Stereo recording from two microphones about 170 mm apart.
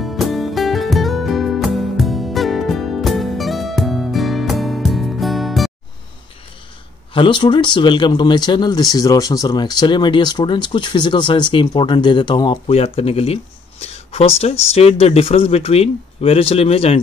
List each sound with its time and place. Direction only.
0.0 s music: centre (ahead or behind)
7.2 s speech: 30° left (ahead or behind)